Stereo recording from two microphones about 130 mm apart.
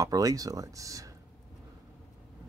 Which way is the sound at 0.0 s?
25° right (ahead or behind).